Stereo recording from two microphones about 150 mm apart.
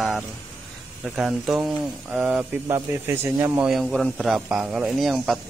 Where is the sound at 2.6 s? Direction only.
20° right (ahead or behind).